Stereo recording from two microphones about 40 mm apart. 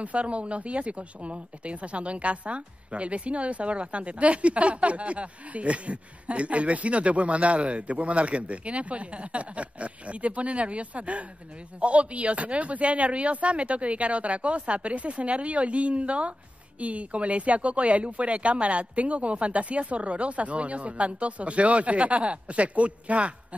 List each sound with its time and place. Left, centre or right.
0.0 s speech: right